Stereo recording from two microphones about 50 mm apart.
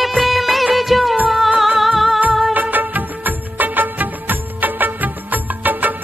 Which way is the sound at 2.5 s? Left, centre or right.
Right.